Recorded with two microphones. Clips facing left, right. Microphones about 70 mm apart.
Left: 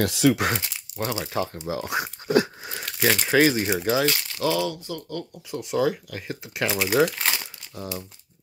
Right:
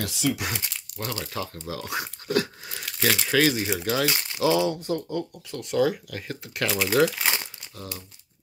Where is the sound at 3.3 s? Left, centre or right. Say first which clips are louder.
Left 3 dB; centre.